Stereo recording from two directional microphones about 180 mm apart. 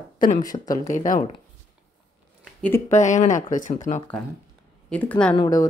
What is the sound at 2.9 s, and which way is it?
Speech, 40° left (ahead or behind).